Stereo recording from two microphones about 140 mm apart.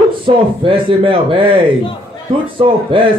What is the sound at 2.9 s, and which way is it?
Speech, 40° right (ahead or behind).